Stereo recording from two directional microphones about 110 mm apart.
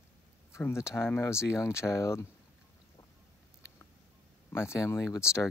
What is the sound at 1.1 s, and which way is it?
Speech, 25° left (ahead or behind).